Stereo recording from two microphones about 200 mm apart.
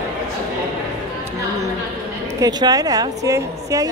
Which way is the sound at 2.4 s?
20° right (ahead or behind).